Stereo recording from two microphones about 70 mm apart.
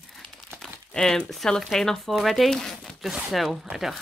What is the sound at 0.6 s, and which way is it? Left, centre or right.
Speech, centre.